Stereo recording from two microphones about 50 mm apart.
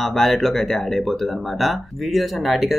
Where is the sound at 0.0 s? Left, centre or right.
Centre.